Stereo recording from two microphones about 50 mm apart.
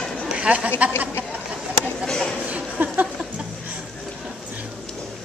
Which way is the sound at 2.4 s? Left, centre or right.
Right.